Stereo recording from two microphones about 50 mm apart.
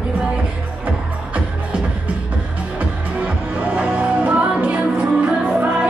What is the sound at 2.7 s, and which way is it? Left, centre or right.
Music, right.